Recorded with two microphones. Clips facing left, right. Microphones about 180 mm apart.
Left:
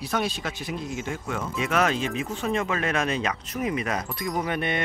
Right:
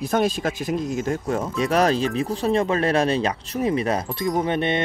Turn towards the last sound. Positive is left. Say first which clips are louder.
# right 5 dB
turn(degrees=-25)  # may be behind; listen again after turning